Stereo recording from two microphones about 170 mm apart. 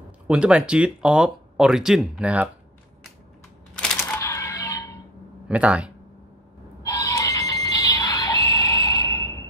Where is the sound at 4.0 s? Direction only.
15° left (ahead or behind).